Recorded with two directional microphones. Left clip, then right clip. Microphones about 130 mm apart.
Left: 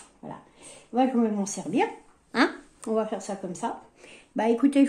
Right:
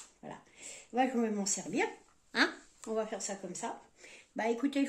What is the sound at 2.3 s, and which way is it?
Speech, 25° left (ahead or behind).